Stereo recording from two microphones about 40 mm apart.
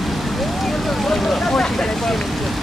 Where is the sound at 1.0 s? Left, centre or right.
Centre.